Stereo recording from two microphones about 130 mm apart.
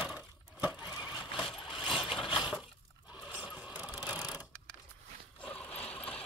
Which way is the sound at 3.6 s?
10° right (ahead or behind).